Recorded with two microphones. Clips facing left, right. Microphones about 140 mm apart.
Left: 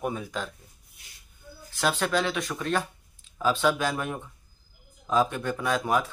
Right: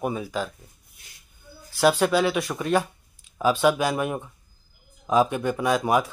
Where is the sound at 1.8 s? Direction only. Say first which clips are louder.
Right 6 dB; 10° right (ahead or behind).